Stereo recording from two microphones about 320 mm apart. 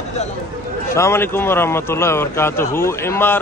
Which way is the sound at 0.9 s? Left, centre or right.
Centre.